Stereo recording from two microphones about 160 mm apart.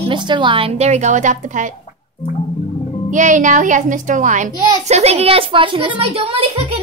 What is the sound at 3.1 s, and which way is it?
A woman's voice, 50° right (ahead or behind).